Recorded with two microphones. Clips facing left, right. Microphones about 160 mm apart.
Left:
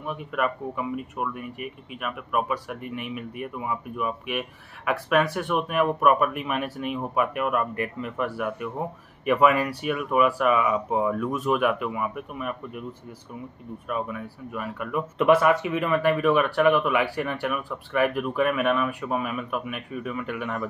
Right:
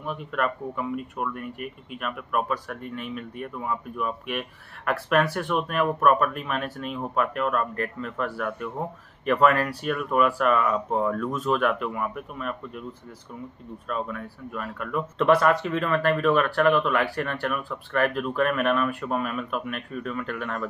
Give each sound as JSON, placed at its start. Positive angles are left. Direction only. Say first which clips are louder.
{"t": 0.0, "sound": "speech", "louder": "even", "side_deg": 5}
{"t": 13.8, "sound": "speech", "louder": "left 1 dB", "side_deg": 10}